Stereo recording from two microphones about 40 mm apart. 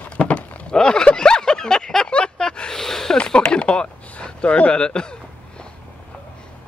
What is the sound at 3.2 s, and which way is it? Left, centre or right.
Speech, left.